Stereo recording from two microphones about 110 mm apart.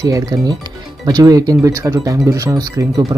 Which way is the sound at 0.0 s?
35° right (ahead or behind).